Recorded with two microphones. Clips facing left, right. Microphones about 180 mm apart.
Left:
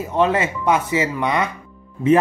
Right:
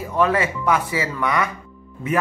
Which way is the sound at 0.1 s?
25° left (ahead or behind).